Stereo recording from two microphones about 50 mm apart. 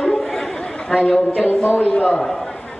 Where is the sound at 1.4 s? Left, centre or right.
Left.